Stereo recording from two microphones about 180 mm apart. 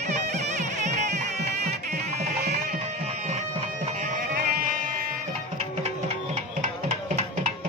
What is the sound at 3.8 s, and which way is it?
Music, 45° right (ahead or behind).